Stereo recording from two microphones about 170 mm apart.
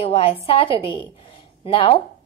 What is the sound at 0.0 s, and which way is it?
A woman's voice, 35° left (ahead or behind).